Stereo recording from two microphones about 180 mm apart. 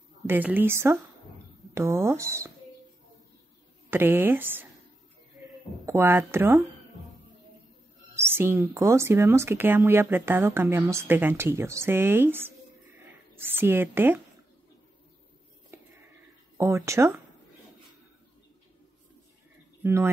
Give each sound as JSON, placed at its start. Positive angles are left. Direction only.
{"t": 0.3, "sound": "speech", "side_deg": -10}
{"t": 3.9, "sound": "speech", "side_deg": -10}
{"t": 5.9, "sound": "speech", "side_deg": -15}
{"t": 8.2, "sound": "speech", "side_deg": -15}
{"t": 16.5, "sound": "speech", "side_deg": -15}
{"t": 19.8, "sound": "speech", "side_deg": -15}